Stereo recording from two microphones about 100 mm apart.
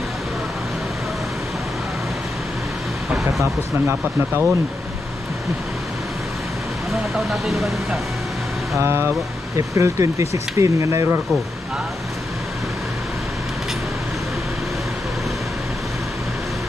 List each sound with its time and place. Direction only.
3.3 s speech: 25° right (ahead or behind)
6.9 s speech: centre (ahead or behind)
8.7 s speech: 25° right (ahead or behind)